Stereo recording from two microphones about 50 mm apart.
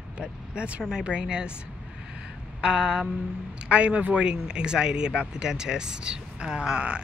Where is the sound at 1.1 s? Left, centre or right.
Centre.